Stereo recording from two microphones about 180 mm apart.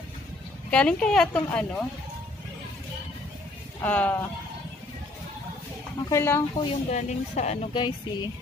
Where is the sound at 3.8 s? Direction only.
10° left (ahead or behind).